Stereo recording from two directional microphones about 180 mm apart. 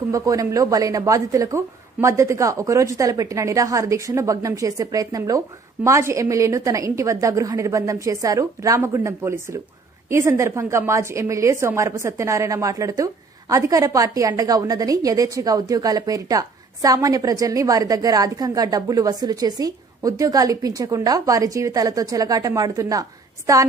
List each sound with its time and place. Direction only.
0.1 s a woman's voice: 20° right (ahead or behind)